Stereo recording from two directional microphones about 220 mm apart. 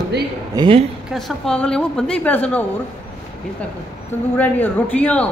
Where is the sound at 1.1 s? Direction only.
Centre (ahead or behind).